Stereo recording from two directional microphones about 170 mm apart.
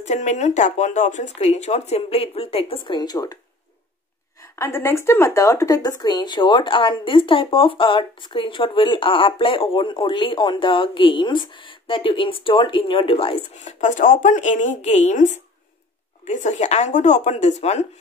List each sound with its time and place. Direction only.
0.0 s speech: 45° left (ahead or behind); by 3.3 s 20° left (ahead or behind)
4.4 s speech: 15° left (ahead or behind); by 17.8 s 40° left (ahead or behind)